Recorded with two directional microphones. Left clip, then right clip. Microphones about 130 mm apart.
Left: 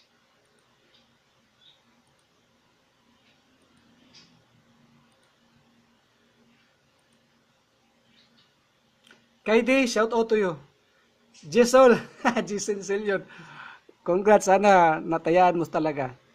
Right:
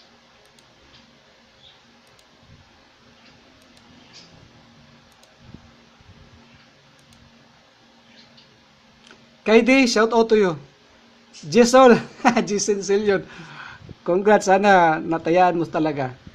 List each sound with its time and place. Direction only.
9.4 s speech: 5° left (ahead or behind)
14.1 s speech: 20° left (ahead or behind)
15.7 s speech: 15° left (ahead or behind)